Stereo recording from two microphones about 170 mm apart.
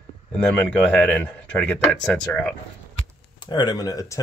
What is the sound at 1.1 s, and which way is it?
Speech, 10° left (ahead or behind).